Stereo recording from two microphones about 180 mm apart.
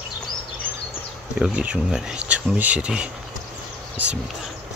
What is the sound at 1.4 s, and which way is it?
Speech, 10° right (ahead or behind).